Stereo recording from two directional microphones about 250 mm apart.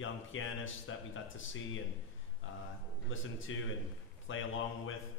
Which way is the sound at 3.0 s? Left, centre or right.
Left.